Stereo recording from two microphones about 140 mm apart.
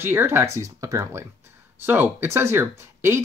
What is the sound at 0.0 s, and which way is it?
Speech, 15° right (ahead or behind).